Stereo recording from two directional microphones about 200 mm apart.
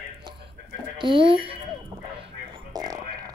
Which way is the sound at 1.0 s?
25° right (ahead or behind).